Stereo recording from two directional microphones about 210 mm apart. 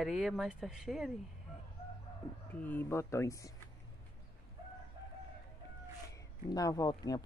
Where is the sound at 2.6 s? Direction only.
10° left (ahead or behind).